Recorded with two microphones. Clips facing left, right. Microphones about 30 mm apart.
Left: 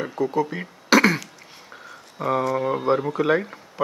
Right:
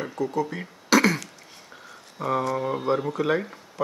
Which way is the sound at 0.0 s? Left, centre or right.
Centre.